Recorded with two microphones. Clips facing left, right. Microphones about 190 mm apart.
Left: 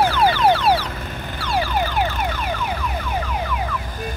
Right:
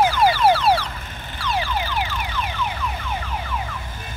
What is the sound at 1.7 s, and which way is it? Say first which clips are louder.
Car alarm: left 4 dB; 50° left (ahead or behind).